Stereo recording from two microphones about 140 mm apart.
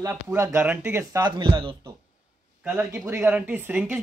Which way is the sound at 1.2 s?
35° right (ahead or behind).